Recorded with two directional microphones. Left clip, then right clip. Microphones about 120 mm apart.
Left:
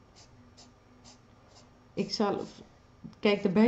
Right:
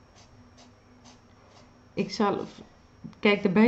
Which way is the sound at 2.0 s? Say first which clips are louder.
Right 3 dB; centre (ahead or behind).